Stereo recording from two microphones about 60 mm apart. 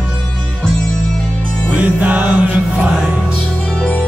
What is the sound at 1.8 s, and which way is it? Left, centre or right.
Music, right.